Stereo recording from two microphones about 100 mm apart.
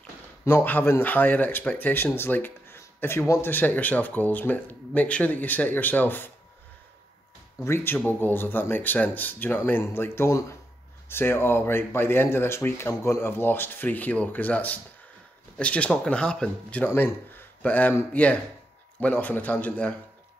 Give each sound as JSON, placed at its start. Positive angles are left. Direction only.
{"t": 0.5, "sound": "speech", "side_deg": 20}
{"t": 7.6, "sound": "speech", "side_deg": 25}